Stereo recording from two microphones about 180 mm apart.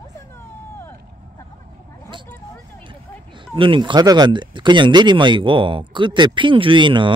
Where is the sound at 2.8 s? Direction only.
25° right (ahead or behind).